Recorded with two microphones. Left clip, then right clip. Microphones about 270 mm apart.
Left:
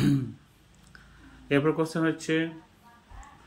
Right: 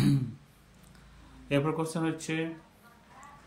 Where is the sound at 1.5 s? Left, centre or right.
Centre.